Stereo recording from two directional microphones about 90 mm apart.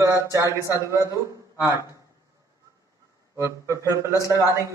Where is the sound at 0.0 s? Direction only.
35° right (ahead or behind).